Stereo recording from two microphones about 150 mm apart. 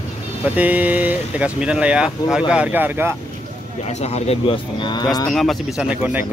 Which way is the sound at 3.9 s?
45° left (ahead or behind).